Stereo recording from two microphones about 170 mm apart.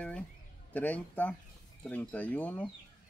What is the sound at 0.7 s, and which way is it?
Speech, 10° left (ahead or behind).